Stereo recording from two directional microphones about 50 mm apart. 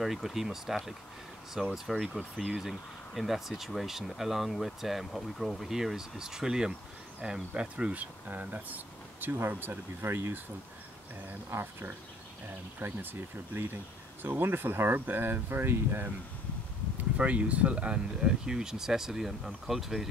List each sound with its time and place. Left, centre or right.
0.0 s speech: centre; by 9.8 s right
10.0 s speech: right
11.5 s speech: right
12.8 s speech: right
17.2 s speech: right; by 20.1 s centre